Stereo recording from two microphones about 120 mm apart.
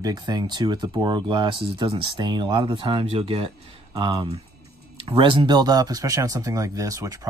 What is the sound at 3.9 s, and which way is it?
Speech, 35° right (ahead or behind).